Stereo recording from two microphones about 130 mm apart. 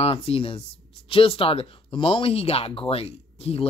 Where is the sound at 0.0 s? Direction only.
45° left (ahead or behind).